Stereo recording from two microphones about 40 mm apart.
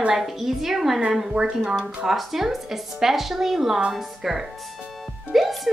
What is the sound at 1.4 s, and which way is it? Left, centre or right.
Speech, right.